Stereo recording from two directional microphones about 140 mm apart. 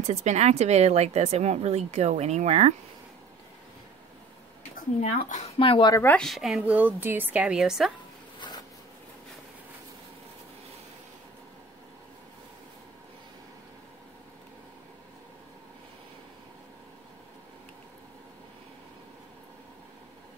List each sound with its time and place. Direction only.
0.0 s speech: 55° right (ahead or behind)
5.0 s speech: 55° left (ahead or behind)
5.6 s speech: 35° left (ahead or behind)
5.9 s speech: 10° left (ahead or behind)
8.4 s zipper: 30° left (ahead or behind)